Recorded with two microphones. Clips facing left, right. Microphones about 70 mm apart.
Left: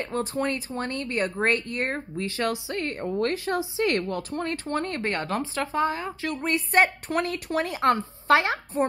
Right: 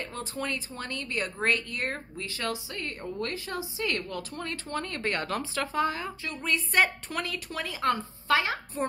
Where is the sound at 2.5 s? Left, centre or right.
Left.